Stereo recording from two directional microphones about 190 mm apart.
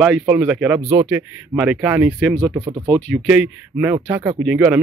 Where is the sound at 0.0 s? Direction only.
5° right (ahead or behind).